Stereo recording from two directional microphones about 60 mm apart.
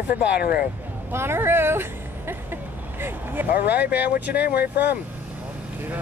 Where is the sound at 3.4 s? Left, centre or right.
Right.